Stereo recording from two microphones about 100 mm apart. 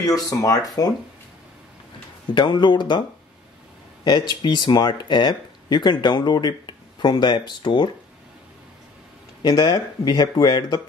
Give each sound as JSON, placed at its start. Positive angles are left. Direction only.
{"t": 0.3, "sound": "speech", "side_deg": 35}
{"t": 2.3, "sound": "speech", "side_deg": 45}
{"t": 9.4, "sound": "speech", "side_deg": 45}